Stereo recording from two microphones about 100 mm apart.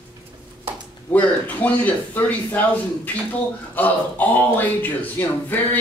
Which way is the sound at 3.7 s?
15° left (ahead or behind).